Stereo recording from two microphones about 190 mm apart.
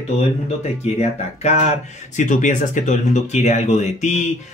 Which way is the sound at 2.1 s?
40° left (ahead or behind).